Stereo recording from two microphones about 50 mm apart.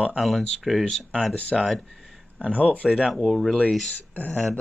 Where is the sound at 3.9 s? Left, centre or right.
Left.